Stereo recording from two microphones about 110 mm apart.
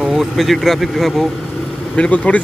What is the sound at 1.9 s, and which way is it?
Speech, 10° left (ahead or behind).